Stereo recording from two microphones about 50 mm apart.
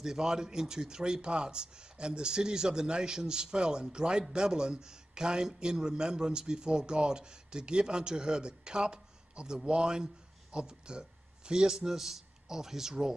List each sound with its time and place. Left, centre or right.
0.0 s a man's voice: centre